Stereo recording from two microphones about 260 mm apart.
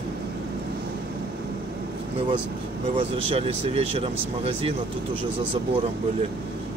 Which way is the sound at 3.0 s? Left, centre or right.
Right.